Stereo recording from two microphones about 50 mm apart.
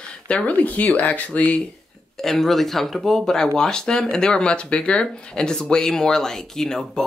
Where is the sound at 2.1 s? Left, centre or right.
Centre.